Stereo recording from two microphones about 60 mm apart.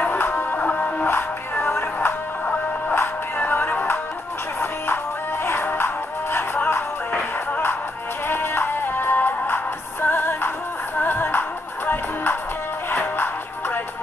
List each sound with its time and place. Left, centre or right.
0.0 s music: left
1.0 s music: left
3.0 s music: left
5.4 s music: left
8.3 s music: left